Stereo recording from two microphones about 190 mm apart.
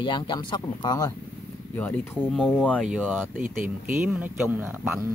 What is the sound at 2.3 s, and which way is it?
Speech, centre (ahead or behind).